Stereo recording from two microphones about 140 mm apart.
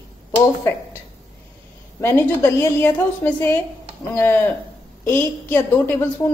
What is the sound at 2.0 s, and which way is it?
A woman's voice, 15° left (ahead or behind).